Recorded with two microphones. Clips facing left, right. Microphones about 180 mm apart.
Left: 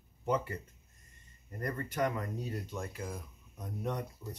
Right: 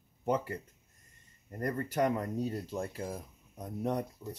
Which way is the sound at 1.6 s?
35° right (ahead or behind).